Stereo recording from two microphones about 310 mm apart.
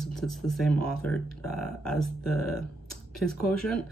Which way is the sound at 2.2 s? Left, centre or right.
Left.